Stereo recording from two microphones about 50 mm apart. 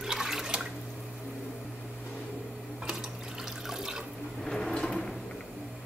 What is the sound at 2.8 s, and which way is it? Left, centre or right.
Water, centre.